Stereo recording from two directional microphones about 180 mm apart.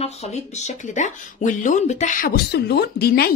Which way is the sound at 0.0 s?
40° left (ahead or behind).